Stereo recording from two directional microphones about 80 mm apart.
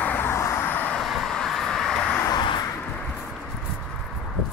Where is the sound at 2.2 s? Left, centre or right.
Left.